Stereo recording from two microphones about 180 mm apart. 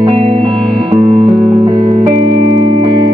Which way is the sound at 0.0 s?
35° right (ahead or behind).